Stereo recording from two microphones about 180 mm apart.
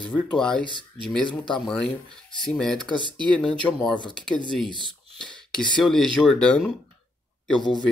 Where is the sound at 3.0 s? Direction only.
25° right (ahead or behind).